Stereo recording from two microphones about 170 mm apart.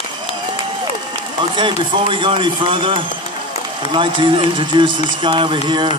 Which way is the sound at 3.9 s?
30° right (ahead or behind).